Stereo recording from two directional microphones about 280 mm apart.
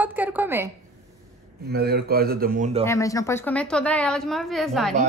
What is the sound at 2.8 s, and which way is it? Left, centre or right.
A woman's voice, centre.